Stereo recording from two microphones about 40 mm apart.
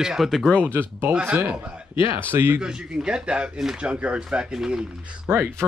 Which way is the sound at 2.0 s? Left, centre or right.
Right.